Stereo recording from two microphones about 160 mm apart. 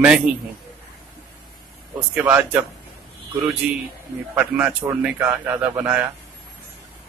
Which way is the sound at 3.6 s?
10° right (ahead or behind).